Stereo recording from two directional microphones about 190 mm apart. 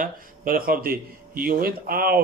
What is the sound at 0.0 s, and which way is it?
Speech, 50° right (ahead or behind).